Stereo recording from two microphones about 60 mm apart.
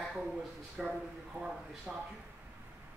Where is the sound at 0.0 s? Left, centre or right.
Centre.